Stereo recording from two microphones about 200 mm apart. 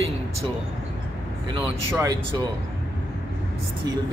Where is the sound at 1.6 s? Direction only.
20° right (ahead or behind).